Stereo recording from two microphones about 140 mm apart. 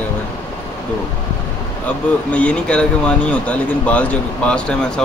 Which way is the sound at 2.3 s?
10° left (ahead or behind).